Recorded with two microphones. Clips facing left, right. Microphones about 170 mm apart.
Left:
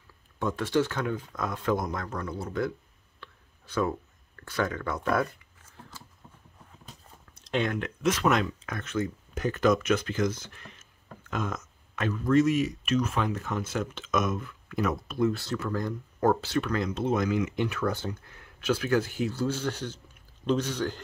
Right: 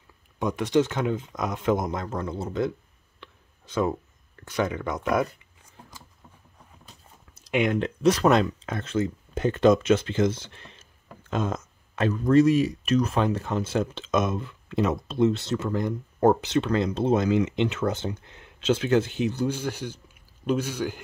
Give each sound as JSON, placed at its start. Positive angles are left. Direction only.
{"t": 0.4, "sound": "speech", "side_deg": -15}
{"t": 3.2, "sound": "whispering", "side_deg": -20}
{"t": 4.4, "sound": "speech", "side_deg": -20}
{"t": 7.3, "sound": "a sound", "side_deg": -10}
{"t": 7.7, "sound": "speech", "side_deg": -30}